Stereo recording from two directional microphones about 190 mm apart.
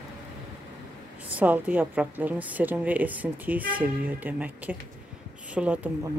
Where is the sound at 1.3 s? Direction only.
10° right (ahead or behind).